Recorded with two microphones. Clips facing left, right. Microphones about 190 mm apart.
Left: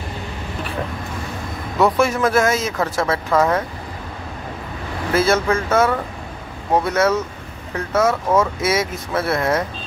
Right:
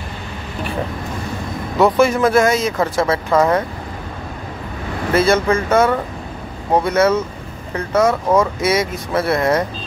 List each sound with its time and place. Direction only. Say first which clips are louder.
1.8 s speech: right 3 dB; centre (ahead or behind)
5.1 s speech: right 2 dB; centre (ahead or behind)